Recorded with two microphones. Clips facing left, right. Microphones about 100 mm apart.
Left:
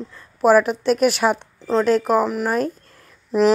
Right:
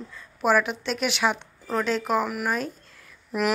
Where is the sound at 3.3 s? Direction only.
30° left (ahead or behind).